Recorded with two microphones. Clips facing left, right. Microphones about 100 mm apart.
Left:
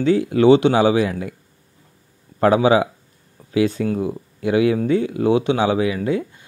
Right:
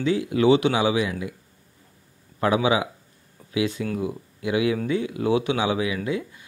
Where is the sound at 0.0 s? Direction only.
40° left (ahead or behind).